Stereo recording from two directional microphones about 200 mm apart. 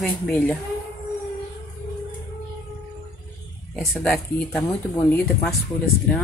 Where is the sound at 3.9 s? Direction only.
10° left (ahead or behind).